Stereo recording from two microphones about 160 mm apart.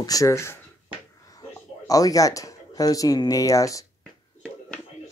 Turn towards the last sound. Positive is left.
turn(degrees=20)  # may be behind; listen again after turning